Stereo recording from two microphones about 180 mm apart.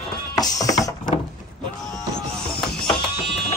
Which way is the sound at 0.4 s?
20° left (ahead or behind).